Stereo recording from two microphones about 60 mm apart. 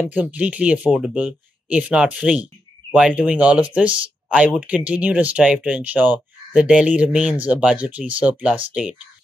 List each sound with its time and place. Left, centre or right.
0.0 s speech: right
6.5 s speech: centre